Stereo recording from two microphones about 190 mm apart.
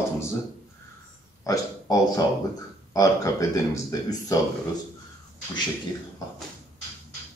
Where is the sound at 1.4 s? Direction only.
20° left (ahead or behind).